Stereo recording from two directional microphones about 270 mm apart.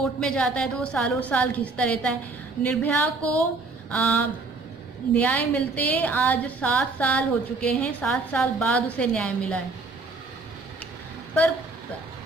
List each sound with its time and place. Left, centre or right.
0.2 s a woman's voice: centre